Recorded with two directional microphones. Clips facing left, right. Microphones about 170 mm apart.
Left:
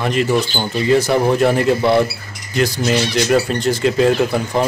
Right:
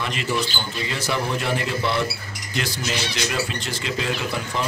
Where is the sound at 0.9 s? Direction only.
45° left (ahead or behind).